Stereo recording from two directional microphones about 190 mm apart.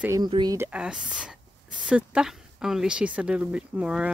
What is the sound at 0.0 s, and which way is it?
Speech, 15° right (ahead or behind).